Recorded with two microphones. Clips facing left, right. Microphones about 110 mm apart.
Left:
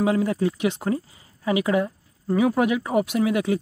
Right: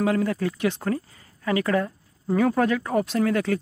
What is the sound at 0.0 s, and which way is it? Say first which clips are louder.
Speech: left 2 dB; 20° left (ahead or behind).